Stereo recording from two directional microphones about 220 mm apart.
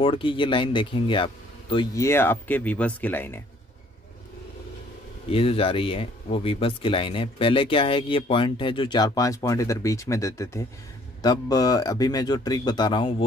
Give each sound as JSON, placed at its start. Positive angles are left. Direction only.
{"t": 0.0, "sound": "speech", "side_deg": 25}
{"t": 5.3, "sound": "speech", "side_deg": 25}